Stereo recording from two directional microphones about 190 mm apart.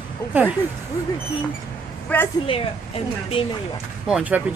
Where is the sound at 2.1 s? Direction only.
10° left (ahead or behind).